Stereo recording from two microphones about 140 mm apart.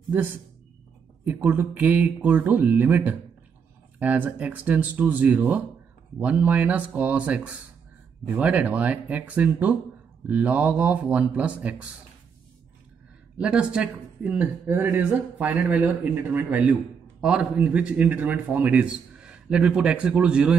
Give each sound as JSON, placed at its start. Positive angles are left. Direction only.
{"t": 0.1, "sound": "speech", "side_deg": -15}
{"t": 13.4, "sound": "speech", "side_deg": -5}